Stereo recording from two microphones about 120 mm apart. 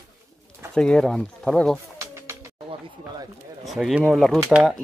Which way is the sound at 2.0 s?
20° right (ahead or behind).